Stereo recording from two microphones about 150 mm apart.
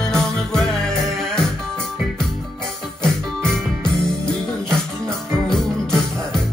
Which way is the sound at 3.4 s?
5° left (ahead or behind).